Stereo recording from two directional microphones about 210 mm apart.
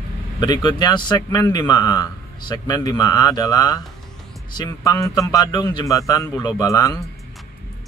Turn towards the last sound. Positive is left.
turn(degrees=15)  # may be behind; listen again after turning